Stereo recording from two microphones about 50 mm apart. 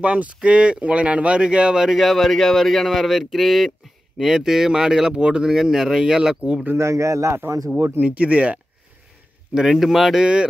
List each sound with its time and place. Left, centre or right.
0.0 s speech: right
6.8 s speech: right
8.0 s speech: right
9.5 s speech: centre